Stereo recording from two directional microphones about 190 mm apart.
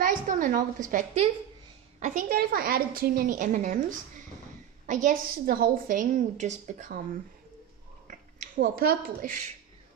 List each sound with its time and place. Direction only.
0.0 s a woman's voice: 45° right (ahead or behind)
4.8 s a woman's voice: 40° right (ahead or behind)
8.1 s speech: 45° right (ahead or behind)